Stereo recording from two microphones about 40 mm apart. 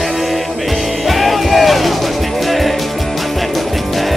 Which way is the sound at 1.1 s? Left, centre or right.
Centre.